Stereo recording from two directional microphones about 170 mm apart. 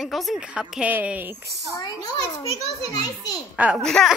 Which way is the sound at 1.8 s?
25° left (ahead or behind).